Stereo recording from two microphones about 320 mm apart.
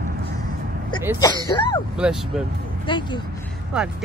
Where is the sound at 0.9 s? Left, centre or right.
Centre.